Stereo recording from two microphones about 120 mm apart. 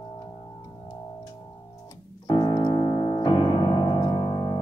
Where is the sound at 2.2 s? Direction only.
35° left (ahead or behind).